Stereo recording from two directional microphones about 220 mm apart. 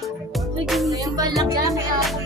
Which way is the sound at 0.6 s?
Centre (ahead or behind).